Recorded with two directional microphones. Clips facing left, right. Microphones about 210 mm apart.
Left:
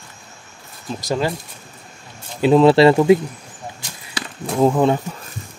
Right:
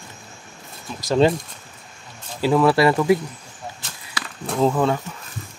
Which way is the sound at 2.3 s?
20° left (ahead or behind).